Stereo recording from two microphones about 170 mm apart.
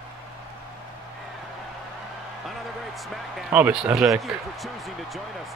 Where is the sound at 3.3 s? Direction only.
5° right (ahead or behind).